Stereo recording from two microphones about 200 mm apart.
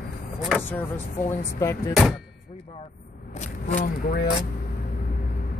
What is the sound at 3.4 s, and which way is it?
Speech, 40° left (ahead or behind).